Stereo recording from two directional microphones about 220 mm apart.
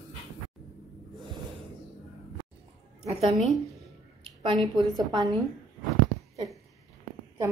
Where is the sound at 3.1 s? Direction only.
30° right (ahead or behind).